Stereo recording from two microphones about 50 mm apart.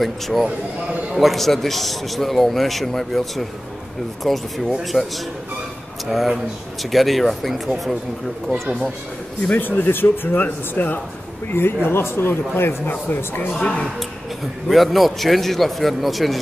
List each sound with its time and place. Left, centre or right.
0.0 s a man's voice: centre
4.9 s speech: centre
6.0 s a man's voice: centre
9.6 s speech: left
11.5 s speech: left
13.6 s speech: left
14.7 s a man's voice: centre